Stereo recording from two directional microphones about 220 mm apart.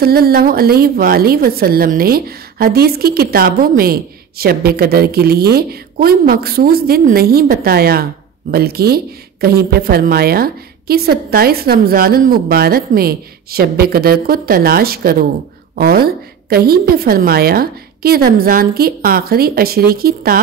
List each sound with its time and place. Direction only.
0.0 s a woman's voice: 45° right (ahead or behind)